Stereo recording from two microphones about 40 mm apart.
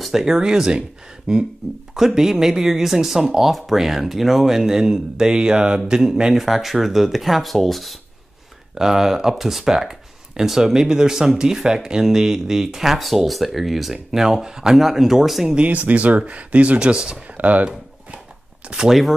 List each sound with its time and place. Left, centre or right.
0.0 s a man's voice: centre
6.3 s speech: centre
8.7 s speech: centre
15.6 s speech: right
16.9 s a man's voice: right
17.4 s speech: right
17.6 s a sound: right
18.9 s speech: centre